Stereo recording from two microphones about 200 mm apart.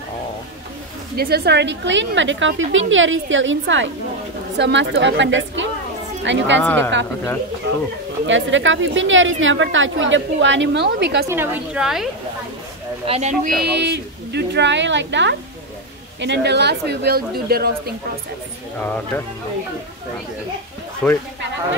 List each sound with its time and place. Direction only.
1.1 s a woman's voice: 50° right (ahead or behind)
6.6 s speech: 10° left (ahead or behind)
8.3 s a woman's voice: 70° right (ahead or behind)
11.2 s a woman's voice: 10° right (ahead or behind)
13.0 s speech: 30° right (ahead or behind)
13.6 s a woman's voice: 55° right (ahead or behind)
21.0 s a woman's voice: 5° left (ahead or behind)